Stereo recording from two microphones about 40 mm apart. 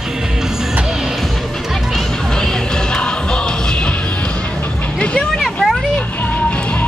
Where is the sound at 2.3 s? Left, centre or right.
Centre.